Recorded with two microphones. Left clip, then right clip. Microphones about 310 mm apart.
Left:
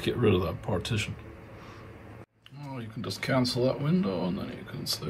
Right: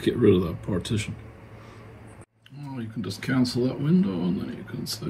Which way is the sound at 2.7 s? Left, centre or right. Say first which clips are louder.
Right 2 dB; centre.